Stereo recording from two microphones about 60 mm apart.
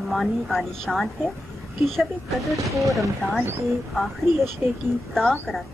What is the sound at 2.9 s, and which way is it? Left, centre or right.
Speech, centre.